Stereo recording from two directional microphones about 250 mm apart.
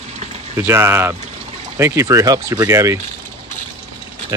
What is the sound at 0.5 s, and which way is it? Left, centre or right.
Speech, centre.